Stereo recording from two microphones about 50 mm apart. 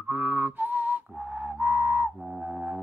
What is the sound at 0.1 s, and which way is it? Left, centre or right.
Whistling, right.